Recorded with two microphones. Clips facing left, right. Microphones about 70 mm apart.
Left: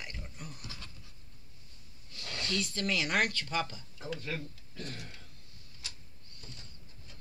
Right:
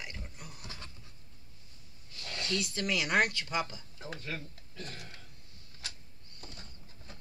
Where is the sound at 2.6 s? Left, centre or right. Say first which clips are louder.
Left 1 dB; centre.